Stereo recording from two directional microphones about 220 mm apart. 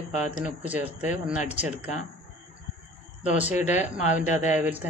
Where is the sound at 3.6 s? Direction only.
30° left (ahead or behind).